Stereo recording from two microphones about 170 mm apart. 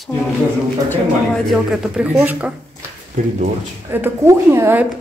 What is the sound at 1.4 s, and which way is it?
Speech, centre (ahead or behind).